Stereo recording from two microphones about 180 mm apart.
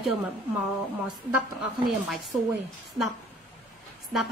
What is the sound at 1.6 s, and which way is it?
Speech, 5° right (ahead or behind).